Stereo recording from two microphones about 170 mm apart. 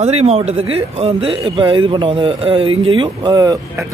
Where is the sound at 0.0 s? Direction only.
40° right (ahead or behind).